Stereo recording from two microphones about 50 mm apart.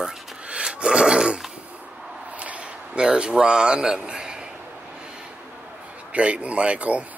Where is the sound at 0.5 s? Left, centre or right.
Centre.